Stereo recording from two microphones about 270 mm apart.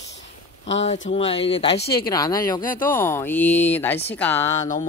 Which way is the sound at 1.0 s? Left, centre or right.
Left.